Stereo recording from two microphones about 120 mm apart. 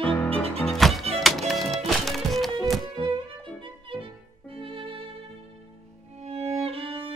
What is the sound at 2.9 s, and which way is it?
Music, 45° right (ahead or behind).